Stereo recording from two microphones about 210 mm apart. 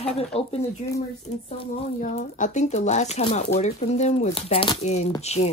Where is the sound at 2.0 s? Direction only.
35° left (ahead or behind).